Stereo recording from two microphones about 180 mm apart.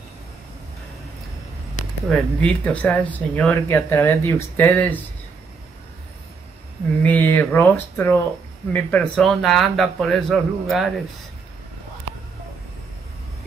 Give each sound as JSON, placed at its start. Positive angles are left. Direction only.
{"t": 2.0, "sound": "speech", "side_deg": 5}
{"t": 7.0, "sound": "speech", "side_deg": 10}